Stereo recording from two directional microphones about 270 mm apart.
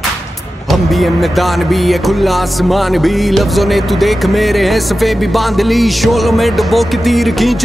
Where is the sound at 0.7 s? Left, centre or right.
Centre.